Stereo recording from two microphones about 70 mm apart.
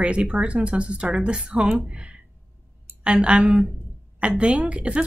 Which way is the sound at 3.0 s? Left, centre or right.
Centre.